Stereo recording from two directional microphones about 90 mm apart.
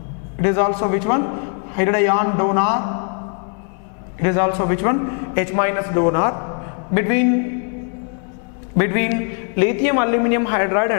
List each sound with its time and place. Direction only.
0.4 s a man's voice: 15° left (ahead or behind)
4.2 s a man's voice: 15° left (ahead or behind)
8.7 s a man's voice: 10° left (ahead or behind)